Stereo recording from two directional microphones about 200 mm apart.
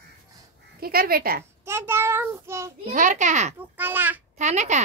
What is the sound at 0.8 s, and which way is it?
Speech, 50° right (ahead or behind).